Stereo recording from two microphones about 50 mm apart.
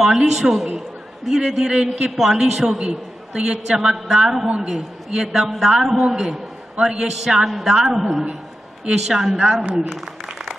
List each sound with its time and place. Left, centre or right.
0.0 s a man's voice: centre
9.4 s a man's voice: centre